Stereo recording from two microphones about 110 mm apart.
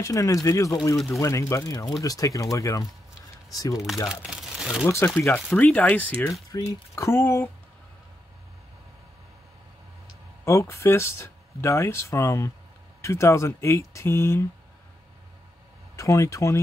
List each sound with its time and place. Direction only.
0.0 s speech: 30° left (ahead or behind)
0.9 s speech: centre (ahead or behind)
1.2 s speech: 30° left (ahead or behind)
3.7 s speech: centre (ahead or behind)
4.1 s crumpling: 5° right (ahead or behind)
4.8 s speech: 20° left (ahead or behind)
6.5 s speech: 30° left (ahead or behind)
10.4 s speech: 25° left (ahead or behind)
16.0 s speech: 30° left (ahead or behind)